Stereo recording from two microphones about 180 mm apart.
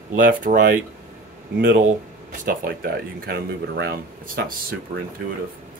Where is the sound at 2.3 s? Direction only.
55° right (ahead or behind).